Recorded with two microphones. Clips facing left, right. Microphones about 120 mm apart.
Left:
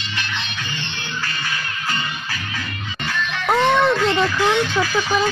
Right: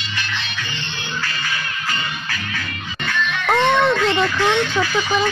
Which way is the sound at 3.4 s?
Centre (ahead or behind).